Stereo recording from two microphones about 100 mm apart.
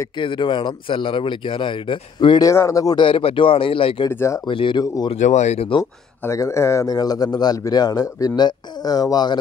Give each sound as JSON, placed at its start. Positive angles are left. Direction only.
{"t": 0.2, "sound": "speech", "side_deg": 55}
{"t": 2.5, "sound": "a man's voice", "side_deg": 30}
{"t": 3.0, "sound": "speech", "side_deg": 65}
{"t": 4.1, "sound": "speech", "side_deg": 25}
{"t": 4.5, "sound": "speech", "side_deg": 55}
{"t": 5.1, "sound": "speech", "side_deg": 90}
{"t": 6.2, "sound": "a man's voice", "side_deg": 30}